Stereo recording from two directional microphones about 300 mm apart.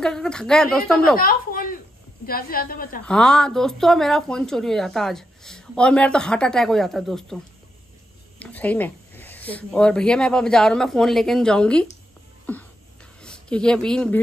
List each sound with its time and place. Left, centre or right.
0.0 s speech: centre
1.1 s a sound: left
2.2 s a woman's voice: left
3.1 s speech: centre
8.4 s speech: centre